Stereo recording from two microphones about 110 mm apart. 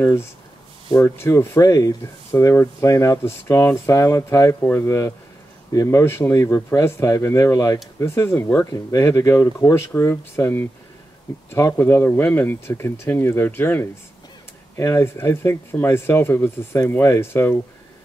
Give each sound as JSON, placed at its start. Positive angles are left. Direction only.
{"t": 0.0, "sound": "speech", "side_deg": 25}